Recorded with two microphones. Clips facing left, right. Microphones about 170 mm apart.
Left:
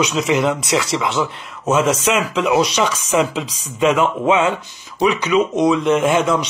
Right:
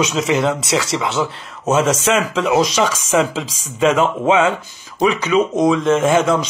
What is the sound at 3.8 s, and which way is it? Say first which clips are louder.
A man's voice: right 1 dB; 35° right (ahead or behind).